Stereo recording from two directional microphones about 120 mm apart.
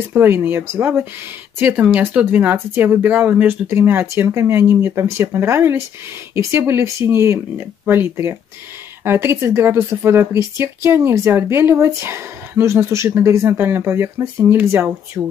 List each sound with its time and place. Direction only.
0.1 s speech: 15° right (ahead or behind)